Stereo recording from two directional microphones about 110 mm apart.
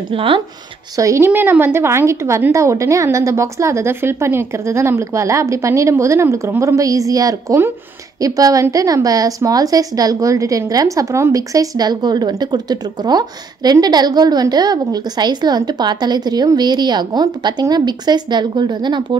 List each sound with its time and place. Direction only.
0.1 s speech: 55° right (ahead or behind)
0.9 s a woman's voice: 25° right (ahead or behind); by 19.1 s 45° right (ahead or behind)